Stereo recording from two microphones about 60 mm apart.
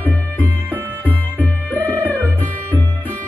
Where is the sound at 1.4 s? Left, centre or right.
Left.